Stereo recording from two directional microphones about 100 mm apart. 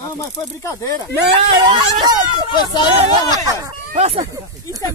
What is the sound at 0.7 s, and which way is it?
Speech, 30° left (ahead or behind).